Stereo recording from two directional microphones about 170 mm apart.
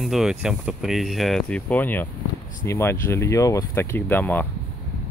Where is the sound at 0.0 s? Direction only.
Centre (ahead or behind).